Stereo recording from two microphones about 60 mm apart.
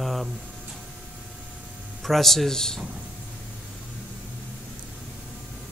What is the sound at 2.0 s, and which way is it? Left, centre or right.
Speech, centre.